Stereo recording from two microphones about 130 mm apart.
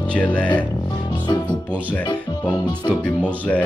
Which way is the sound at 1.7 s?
10° left (ahead or behind).